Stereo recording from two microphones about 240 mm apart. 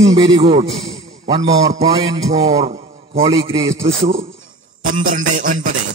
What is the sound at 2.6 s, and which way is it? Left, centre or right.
A man's voice, right.